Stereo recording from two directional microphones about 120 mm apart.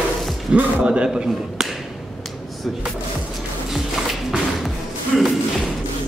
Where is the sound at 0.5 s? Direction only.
10° right (ahead or behind).